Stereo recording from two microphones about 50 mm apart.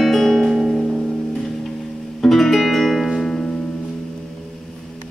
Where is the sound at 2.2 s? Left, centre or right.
Centre.